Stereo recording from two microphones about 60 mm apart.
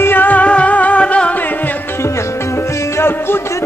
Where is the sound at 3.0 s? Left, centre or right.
Left.